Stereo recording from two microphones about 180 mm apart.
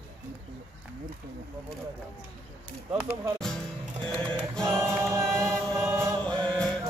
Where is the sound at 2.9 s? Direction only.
Centre (ahead or behind).